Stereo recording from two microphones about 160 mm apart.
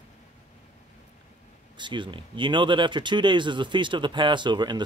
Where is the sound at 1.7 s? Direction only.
30° right (ahead or behind).